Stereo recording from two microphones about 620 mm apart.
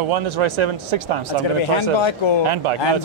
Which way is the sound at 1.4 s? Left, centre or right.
Left.